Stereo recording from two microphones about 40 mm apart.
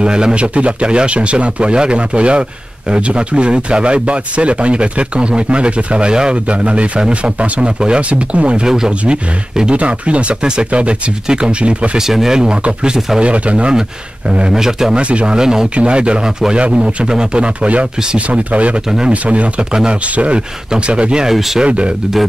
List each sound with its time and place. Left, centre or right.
0.0 s a man's voice: right
8.6 s speech: centre
9.8 s a man's voice: right
12.1 s speech: centre
13.2 s speech: right
14.5 s speech: centre
15.0 s speech: right
15.3 s speech: centre
15.7 s speech: right
18.9 s speech: centre
19.2 s a man's voice: right
19.7 s speech: centre
20.2 s a man's voice: right